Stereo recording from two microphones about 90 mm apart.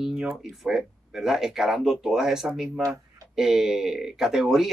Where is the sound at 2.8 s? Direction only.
40° right (ahead or behind).